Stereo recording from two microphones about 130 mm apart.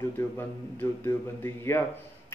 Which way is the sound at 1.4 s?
20° left (ahead or behind).